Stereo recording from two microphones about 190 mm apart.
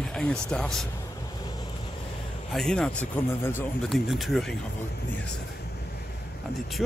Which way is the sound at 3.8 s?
Centre (ahead or behind).